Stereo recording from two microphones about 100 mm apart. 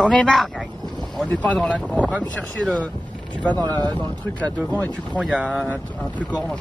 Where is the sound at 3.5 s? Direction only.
45° right (ahead or behind).